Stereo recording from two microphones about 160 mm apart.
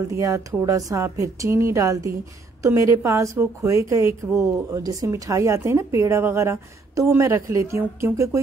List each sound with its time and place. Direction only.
0.1 s a woman's voice: 20° right (ahead or behind)